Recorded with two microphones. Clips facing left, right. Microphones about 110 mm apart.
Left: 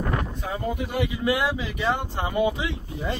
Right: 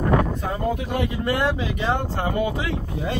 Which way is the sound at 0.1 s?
70° right (ahead or behind).